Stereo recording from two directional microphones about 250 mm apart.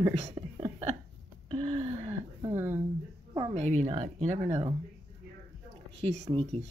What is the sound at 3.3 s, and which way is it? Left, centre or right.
Speech, right.